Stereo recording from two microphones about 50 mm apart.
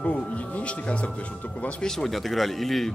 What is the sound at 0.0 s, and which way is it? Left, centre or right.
Speech, left.